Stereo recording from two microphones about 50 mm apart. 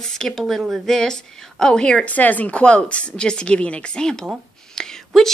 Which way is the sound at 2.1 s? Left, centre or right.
Left.